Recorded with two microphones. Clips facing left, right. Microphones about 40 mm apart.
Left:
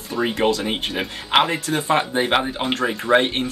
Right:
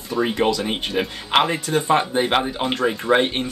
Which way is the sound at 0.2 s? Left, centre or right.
Centre.